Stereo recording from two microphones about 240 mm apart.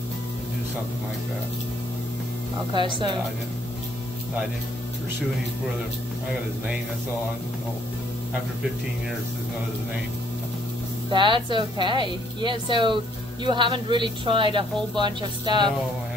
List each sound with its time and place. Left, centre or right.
2.7 s speech: centre
11.1 s speech: right